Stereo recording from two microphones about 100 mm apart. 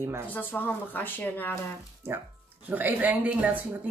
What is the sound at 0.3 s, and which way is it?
Speech, 20° left (ahead or behind).